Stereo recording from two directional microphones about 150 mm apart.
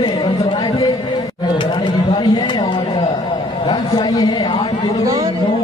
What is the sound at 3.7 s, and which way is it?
A man's voice, 30° left (ahead or behind).